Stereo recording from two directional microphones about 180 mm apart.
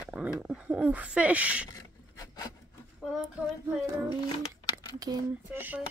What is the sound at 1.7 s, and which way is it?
Rub, 20° left (ahead or behind).